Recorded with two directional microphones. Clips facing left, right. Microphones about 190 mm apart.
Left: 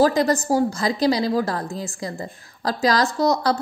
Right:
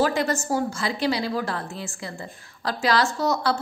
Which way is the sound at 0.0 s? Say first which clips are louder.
Left 5 dB; 35° left (ahead or behind).